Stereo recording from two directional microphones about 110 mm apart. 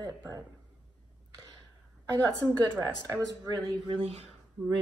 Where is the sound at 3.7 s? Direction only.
55° right (ahead or behind).